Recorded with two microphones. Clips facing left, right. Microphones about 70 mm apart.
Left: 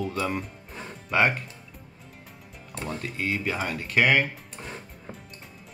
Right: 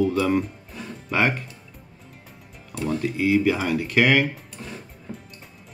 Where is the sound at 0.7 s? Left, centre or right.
Left.